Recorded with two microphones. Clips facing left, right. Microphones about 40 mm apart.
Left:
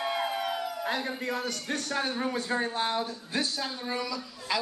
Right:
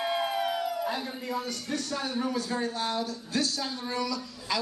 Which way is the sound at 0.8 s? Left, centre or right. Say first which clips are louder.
Left 1 dB; left.